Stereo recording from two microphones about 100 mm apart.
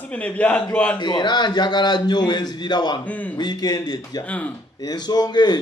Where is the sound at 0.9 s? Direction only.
50° left (ahead or behind).